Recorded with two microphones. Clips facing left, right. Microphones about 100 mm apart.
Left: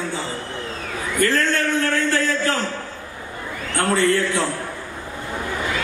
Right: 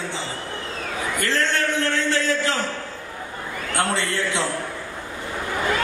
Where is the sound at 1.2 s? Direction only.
20° right (ahead or behind).